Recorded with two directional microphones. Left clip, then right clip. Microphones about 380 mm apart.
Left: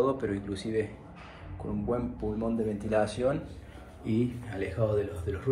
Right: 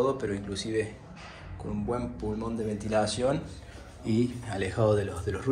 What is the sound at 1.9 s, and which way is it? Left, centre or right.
Speech, centre.